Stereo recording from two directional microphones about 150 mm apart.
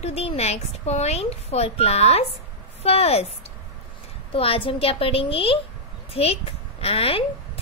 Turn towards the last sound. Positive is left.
turn(degrees=40)  # may be behind; listen again after turning